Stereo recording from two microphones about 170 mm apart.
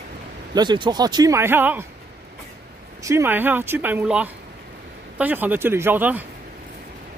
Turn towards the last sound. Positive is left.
turn(degrees=-10)  # may be behind; listen again after turning